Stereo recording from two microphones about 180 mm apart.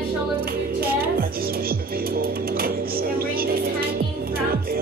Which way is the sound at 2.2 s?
55° right (ahead or behind).